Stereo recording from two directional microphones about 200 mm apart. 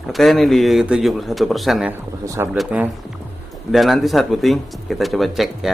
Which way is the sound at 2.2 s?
15° right (ahead or behind).